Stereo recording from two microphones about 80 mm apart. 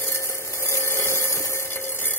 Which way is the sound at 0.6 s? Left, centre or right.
Left.